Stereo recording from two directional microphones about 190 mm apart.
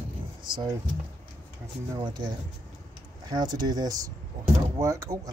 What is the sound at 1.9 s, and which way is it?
Speech, 25° right (ahead or behind).